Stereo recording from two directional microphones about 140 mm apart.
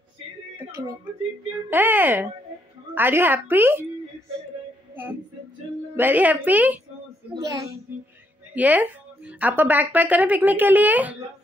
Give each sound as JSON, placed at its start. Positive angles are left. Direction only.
{"t": 1.7, "sound": "a woman's voice", "side_deg": -15}
{"t": 5.9, "sound": "a woman's voice", "side_deg": -10}
{"t": 8.5, "sound": "a woman's voice", "side_deg": -10}